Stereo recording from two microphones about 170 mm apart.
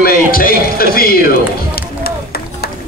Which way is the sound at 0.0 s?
60° left (ahead or behind).